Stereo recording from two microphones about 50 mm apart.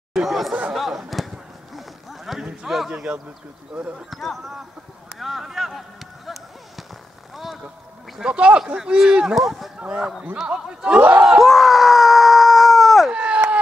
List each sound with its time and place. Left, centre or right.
0.1 s chatter: centre
0.7 s a sound: centre
2.6 s speech: centre
4.1 s speech: centre
5.2 s a sound: centre
8.2 s speech: right; by 9.7 s centre
9.8 s speech: centre
11.0 s speech: right
11.2 s screaming: centre
13.1 s a sound: right